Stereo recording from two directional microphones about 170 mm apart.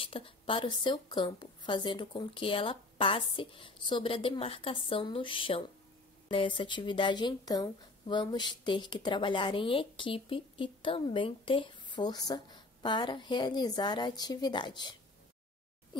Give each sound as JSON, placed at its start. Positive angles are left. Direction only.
{"t": 0.0, "sound": "a woman's voice", "side_deg": 30}